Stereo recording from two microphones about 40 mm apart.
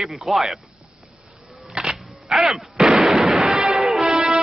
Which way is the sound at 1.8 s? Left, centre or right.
Centre.